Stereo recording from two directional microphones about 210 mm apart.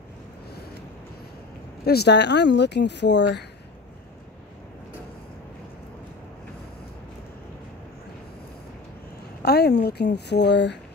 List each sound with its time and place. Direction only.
1.9 s speech: 50° left (ahead or behind)
9.4 s a woman's voice: 50° left (ahead or behind)